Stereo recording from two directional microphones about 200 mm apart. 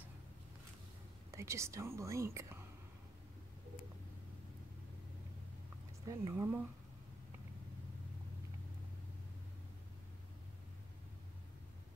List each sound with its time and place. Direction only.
1.3 s a woman's voice: 15° right (ahead or behind)
6.0 s a woman's voice: 15° right (ahead or behind)